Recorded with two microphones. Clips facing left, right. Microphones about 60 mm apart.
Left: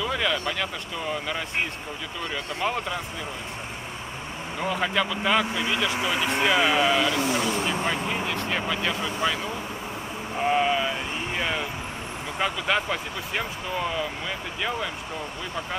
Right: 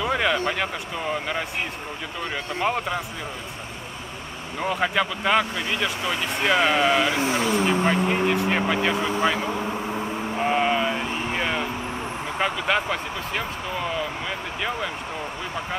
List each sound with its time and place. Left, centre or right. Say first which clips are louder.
0.0 s speech: right 4 dB; right
2.3 s speech: right 3 dB; centre
4.6 s speech: right 2 dB; centre
5.5 s speech: even; centre
7.1 s speech: right 2 dB; right
10.4 s speech: right 1 dB; centre